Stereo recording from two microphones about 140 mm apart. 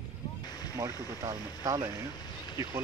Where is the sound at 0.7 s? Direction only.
20° right (ahead or behind).